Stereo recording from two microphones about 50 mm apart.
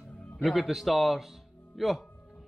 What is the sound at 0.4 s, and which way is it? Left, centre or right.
Speech, centre.